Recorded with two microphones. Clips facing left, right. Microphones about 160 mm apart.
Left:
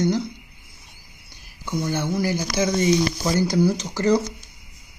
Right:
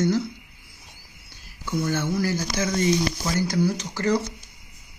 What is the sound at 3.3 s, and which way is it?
Speech, 30° left (ahead or behind).